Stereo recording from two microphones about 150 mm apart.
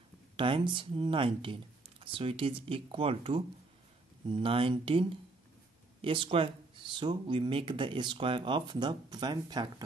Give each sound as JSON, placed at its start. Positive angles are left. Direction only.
{"t": 0.4, "sound": "speech", "side_deg": -35}